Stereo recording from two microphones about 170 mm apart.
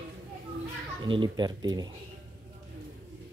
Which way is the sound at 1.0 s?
30° right (ahead or behind).